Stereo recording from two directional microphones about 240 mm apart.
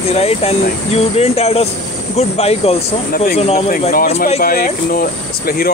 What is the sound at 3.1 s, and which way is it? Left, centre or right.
Speech, left.